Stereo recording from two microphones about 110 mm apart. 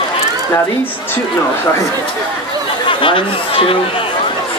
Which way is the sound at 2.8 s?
50° left (ahead or behind).